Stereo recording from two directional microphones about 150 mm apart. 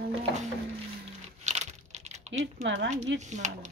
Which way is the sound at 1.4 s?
50° right (ahead or behind).